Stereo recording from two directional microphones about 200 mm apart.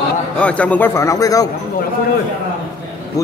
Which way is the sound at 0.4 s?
5° left (ahead or behind).